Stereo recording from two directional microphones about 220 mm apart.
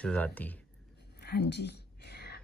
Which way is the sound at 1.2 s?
50° left (ahead or behind).